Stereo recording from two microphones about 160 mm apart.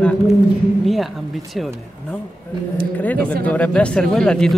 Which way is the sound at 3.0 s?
10° left (ahead or behind).